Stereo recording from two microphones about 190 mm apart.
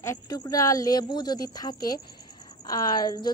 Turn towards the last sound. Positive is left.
turn(degrees=20)  # may be behind; listen again after turning